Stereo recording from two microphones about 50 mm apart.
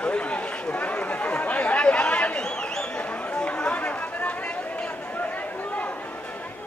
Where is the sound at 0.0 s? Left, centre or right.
Left.